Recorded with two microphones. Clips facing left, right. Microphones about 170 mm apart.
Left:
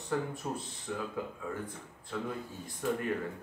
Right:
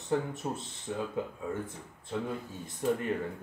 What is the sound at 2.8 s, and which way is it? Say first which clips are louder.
Speech: right 3 dB; 25° right (ahead or behind).